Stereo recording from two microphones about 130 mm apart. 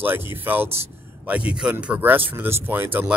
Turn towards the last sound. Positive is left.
turn(degrees=-15)  # may be behind; listen again after turning